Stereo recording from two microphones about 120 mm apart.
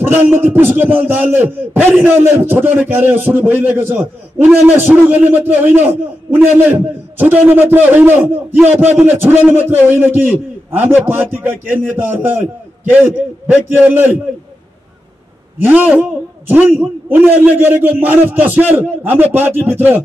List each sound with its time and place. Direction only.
0.0 s a man's voice: 15° right (ahead or behind)
15.6 s a man's voice: 15° right (ahead or behind)